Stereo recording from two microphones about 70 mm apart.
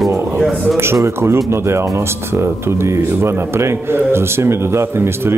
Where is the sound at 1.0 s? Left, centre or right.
Right.